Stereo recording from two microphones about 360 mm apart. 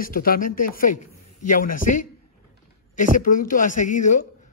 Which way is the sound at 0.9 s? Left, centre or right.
Left.